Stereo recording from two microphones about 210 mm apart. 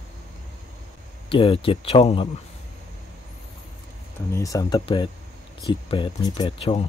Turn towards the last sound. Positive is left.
turn(degrees=25)  # may be behind; listen again after turning